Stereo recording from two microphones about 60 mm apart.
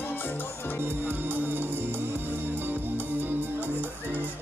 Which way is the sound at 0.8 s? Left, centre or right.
Right.